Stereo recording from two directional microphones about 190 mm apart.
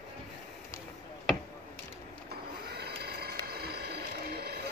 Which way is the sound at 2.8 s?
55° right (ahead or behind).